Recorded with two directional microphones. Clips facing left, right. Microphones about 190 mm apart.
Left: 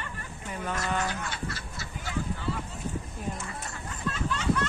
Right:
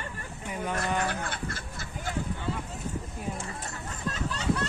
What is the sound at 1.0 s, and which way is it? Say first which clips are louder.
Speech: right 1 dB; 55° right (ahead or behind).